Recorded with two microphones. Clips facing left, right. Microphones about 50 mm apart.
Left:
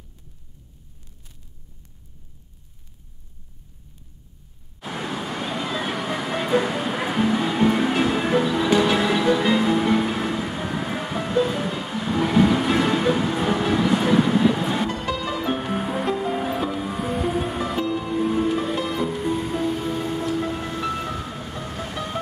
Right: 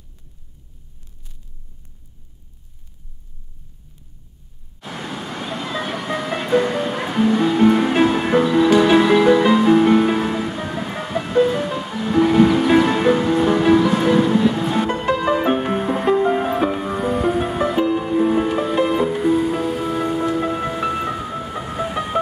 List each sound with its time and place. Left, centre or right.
4.7 s music: centre
7.9 s music: centre
8.4 s music: centre
14.9 s music: right
15.7 s music: centre